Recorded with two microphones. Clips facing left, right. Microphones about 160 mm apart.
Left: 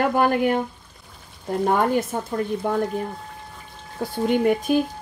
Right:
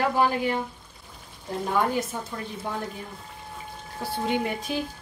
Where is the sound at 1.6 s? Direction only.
55° left (ahead or behind).